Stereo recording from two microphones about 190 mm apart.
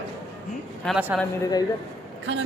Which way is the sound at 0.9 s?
5° right (ahead or behind).